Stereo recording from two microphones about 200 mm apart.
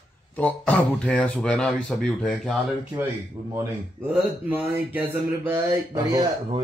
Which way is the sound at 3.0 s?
15° right (ahead or behind).